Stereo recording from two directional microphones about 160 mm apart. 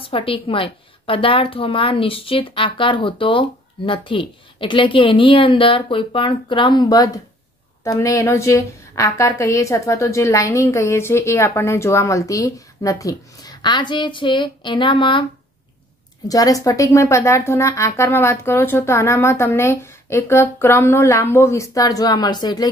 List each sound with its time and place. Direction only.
0.0 s a woman's voice: 35° left (ahead or behind)
16.3 s speech: 20° left (ahead or behind)